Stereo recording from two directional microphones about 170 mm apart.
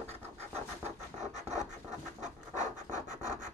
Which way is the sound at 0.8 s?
45° right (ahead or behind).